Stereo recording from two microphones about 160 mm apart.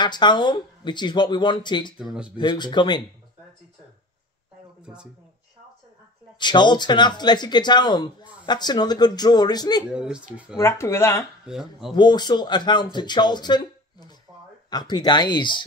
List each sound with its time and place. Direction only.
0.0 s speech: 30° left (ahead or behind)
6.4 s speech: 30° left (ahead or behind)
9.8 s speech: 5° right (ahead or behind)
10.6 s speech: 15° left (ahead or behind)
11.4 s speech: 5° right (ahead or behind)
11.9 s speech: 25° left (ahead or behind)